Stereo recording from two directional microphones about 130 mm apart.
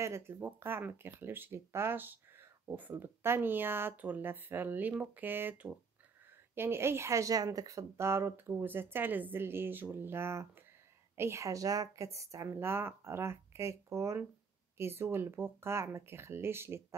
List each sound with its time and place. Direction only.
0.0 s speech: 20° right (ahead or behind)